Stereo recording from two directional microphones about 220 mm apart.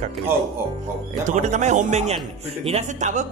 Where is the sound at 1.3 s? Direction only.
30° right (ahead or behind).